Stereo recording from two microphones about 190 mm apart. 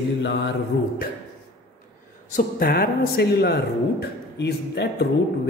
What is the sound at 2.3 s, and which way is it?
A man's voice, 50° left (ahead or behind).